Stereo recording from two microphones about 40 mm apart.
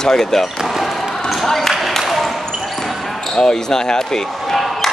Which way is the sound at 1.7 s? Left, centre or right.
Centre.